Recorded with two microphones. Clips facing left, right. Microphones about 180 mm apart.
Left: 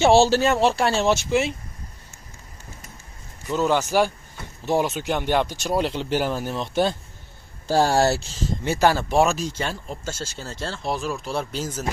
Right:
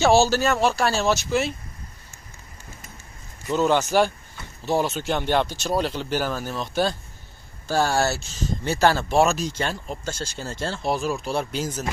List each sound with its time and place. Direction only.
0.0 s speech: 30° left (ahead or behind)
3.5 s speech: 5° left (ahead or behind); by 7.0 s 20° left (ahead or behind)
7.6 s speech: 30° left (ahead or behind)
8.6 s speech: 10° left (ahead or behind)
9.1 s speech: centre (ahead or behind)